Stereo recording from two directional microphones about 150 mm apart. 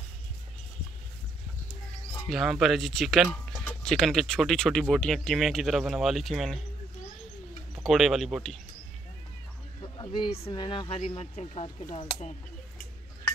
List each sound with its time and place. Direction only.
2.2 s speech: centre (ahead or behind)
7.7 s speech: centre (ahead or behind)
9.8 s speech: 30° left (ahead or behind)